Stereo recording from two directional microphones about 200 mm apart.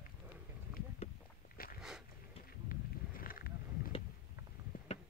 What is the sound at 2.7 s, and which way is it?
Wild animals, 45° left (ahead or behind).